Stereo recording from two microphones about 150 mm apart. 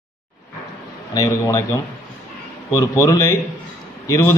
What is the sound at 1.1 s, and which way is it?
Speech, 25° left (ahead or behind).